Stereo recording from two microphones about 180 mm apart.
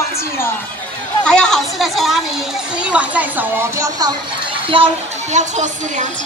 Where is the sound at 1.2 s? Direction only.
5° left (ahead or behind).